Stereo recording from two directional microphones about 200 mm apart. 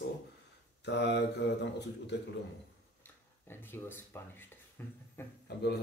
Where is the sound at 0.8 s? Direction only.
60° left (ahead or behind).